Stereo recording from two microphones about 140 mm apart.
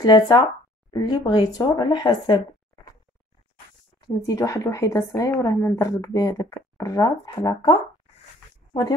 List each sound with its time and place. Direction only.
0.0 s a woman's voice: 30° left (ahead or behind)
4.0 s a woman's voice: 25° left (ahead or behind)